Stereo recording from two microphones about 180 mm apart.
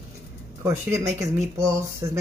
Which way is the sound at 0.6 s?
15° right (ahead or behind).